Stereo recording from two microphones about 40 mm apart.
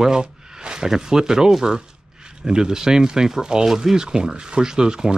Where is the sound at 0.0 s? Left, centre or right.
Centre.